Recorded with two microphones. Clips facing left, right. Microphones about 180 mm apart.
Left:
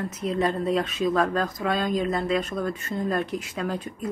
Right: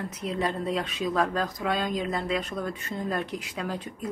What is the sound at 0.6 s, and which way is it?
Speech, 15° right (ahead or behind).